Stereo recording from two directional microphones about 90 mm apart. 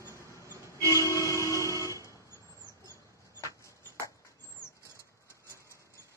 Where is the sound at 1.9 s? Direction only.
35° left (ahead or behind).